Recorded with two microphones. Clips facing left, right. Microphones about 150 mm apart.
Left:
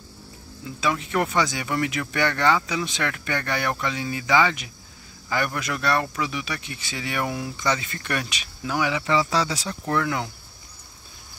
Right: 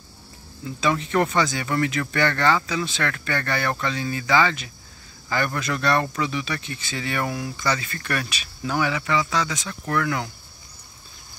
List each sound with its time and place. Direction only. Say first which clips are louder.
0.7 s speech: right 2 dB; 5° left (ahead or behind)
9.0 s speech: left 1 dB; 30° left (ahead or behind)